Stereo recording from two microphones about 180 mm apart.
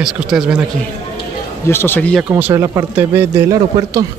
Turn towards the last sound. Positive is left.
turn(degrees=-15)  # may be behind; listen again after turning